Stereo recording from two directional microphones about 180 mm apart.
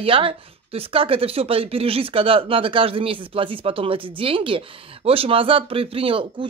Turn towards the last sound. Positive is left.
turn(degrees=-30)  # may be behind; listen again after turning